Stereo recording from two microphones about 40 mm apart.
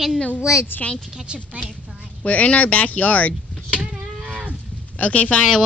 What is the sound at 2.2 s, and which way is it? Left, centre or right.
Speech, left.